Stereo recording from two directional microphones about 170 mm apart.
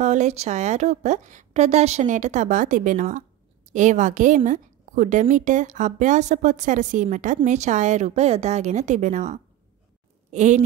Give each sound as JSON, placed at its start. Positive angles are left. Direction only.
{"t": 0.0, "sound": "a woman's voice", "side_deg": -45}